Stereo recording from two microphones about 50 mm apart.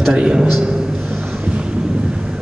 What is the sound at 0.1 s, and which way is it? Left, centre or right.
Speech, centre.